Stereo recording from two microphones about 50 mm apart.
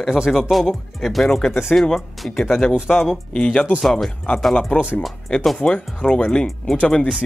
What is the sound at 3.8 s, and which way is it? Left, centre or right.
Speech, centre.